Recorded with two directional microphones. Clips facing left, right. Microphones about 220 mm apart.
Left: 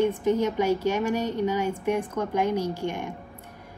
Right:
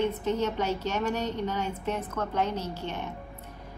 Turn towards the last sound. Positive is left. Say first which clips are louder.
# left 6 dB
turn(degrees=10)  # may be behind; listen again after turning